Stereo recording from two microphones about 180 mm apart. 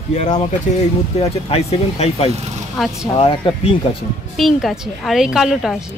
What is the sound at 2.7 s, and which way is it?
Speech, centre (ahead or behind).